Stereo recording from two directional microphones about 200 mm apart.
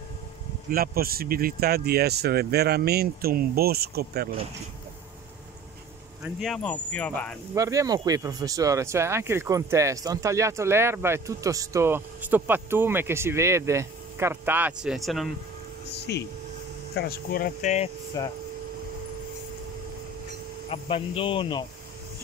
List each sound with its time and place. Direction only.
0.7 s speech: 50° right (ahead or behind)
6.2 s speech: centre (ahead or behind)
7.5 s speech: 15° right (ahead or behind); by 15.3 s centre (ahead or behind)
16.1 s speech: 55° left (ahead or behind); by 17.9 s 35° left (ahead or behind)
18.2 s speech: 20° left (ahead or behind)
20.7 s speech: 30° left (ahead or behind)